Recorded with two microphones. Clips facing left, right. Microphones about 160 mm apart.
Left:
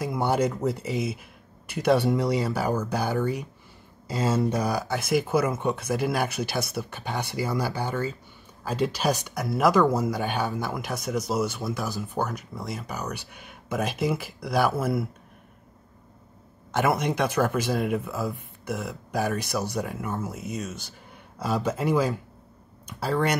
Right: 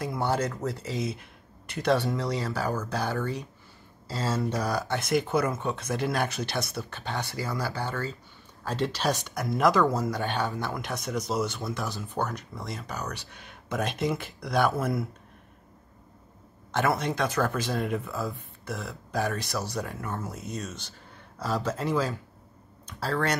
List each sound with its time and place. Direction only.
0.0 s speech: 10° left (ahead or behind)
4.7 s speech: 5° left (ahead or behind)
16.7 s speech: 15° left (ahead or behind)